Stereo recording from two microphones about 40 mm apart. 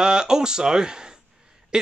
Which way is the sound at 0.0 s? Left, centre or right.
Centre.